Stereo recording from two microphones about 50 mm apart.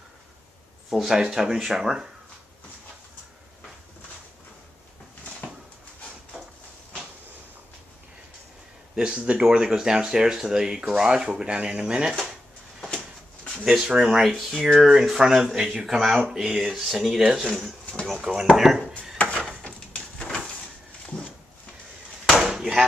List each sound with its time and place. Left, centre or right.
0.8 s speech: centre
8.9 s speech: centre
13.7 s speech: centre
19.6 s a sound: left
22.4 s chop: centre